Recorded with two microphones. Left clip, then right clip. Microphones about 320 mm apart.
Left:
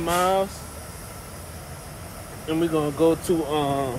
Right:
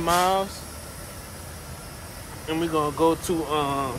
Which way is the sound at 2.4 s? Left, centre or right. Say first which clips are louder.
Left 1 dB; centre.